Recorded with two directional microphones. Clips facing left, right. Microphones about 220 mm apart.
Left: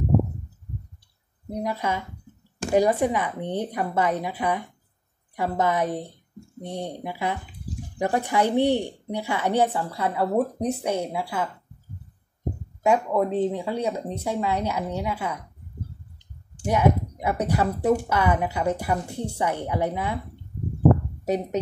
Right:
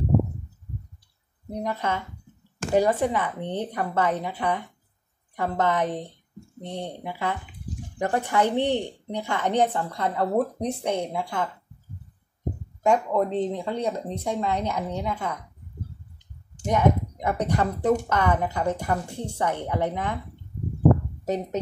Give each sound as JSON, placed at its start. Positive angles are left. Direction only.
{"t": 1.5, "sound": "speech", "side_deg": 10}
{"t": 12.8, "sound": "speech", "side_deg": 10}
{"t": 16.6, "sound": "speech", "side_deg": 10}
{"t": 21.2, "sound": "speech", "side_deg": 10}